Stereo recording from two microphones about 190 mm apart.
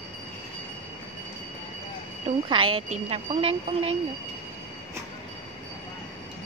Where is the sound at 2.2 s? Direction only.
25° right (ahead or behind).